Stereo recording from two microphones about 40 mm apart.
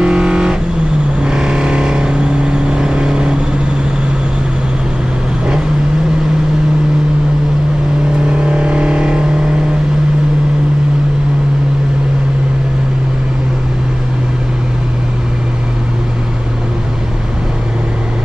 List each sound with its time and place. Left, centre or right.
0.0 s vehicle: right
8.5 s vehicle: right